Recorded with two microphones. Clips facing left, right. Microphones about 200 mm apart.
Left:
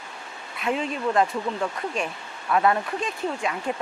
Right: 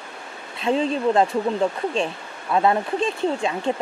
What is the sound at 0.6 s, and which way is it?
Speech, 30° right (ahead or behind).